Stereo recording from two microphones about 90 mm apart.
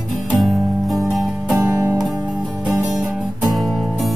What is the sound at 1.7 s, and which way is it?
Music, 35° right (ahead or behind).